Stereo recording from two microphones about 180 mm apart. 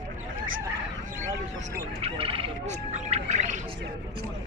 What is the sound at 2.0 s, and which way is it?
Bird, 30° right (ahead or behind).